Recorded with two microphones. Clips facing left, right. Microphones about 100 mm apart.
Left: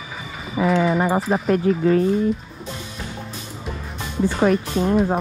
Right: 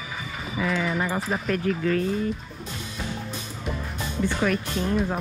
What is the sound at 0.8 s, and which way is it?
Speech, 40° left (ahead or behind).